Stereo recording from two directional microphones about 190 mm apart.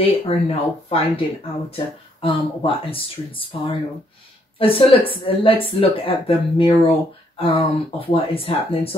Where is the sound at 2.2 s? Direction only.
30° left (ahead or behind).